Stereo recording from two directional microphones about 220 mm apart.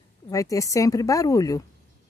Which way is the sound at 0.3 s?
15° left (ahead or behind).